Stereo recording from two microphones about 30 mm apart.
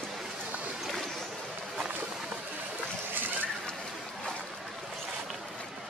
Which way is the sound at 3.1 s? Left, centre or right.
Right.